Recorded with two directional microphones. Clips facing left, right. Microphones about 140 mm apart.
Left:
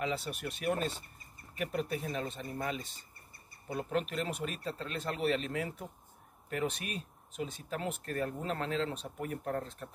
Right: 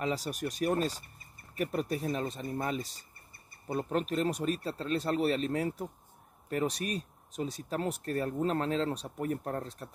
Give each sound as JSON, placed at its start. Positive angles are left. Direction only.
{"t": 0.0, "sound": "speech", "side_deg": -40}